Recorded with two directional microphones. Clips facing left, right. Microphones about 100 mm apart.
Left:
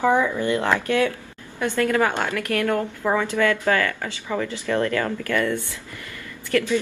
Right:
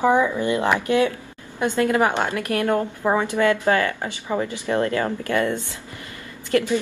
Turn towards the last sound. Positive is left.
turn(degrees=-15)  # may be behind; listen again after turning